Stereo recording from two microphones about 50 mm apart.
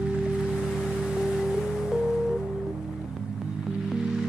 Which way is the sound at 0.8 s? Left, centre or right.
Centre.